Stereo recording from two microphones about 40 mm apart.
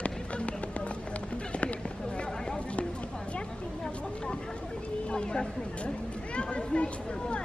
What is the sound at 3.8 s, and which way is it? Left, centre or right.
Speech, left.